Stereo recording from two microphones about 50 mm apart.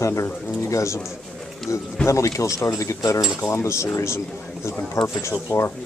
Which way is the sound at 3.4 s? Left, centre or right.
Left.